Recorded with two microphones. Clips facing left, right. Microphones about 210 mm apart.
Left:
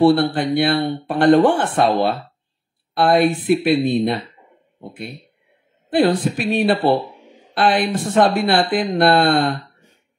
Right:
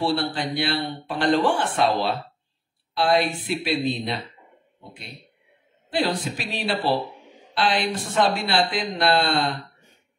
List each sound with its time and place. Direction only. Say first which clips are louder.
0.0 s speech: left 10 dB; 55° left (ahead or behind)